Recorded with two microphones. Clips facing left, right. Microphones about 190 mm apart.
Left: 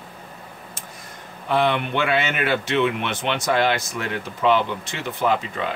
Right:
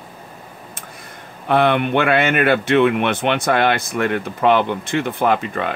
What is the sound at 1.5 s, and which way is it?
Speech, 60° right (ahead or behind).